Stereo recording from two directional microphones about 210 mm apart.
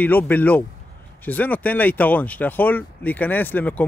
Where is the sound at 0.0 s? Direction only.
10° left (ahead or behind).